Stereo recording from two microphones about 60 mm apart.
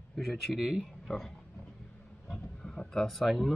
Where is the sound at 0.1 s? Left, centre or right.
Centre.